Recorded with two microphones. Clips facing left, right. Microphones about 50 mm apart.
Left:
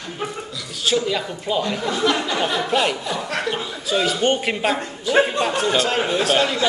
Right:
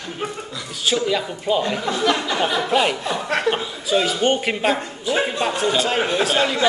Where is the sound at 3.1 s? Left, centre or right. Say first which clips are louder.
Right 3 dB; right.